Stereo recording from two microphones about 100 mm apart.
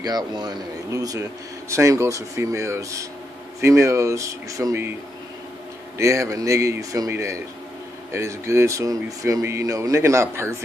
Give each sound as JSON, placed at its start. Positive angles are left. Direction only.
{"t": 0.0, "sound": "speech", "side_deg": -45}
{"t": 5.9, "sound": "speech", "side_deg": -30}